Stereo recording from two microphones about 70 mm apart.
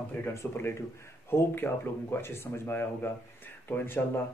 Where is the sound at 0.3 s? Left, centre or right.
Left.